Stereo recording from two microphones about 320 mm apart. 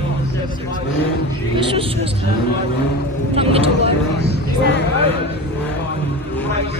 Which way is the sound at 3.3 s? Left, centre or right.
Centre.